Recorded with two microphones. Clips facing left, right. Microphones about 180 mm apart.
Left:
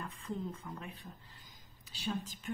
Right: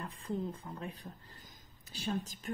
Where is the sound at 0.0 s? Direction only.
35° right (ahead or behind).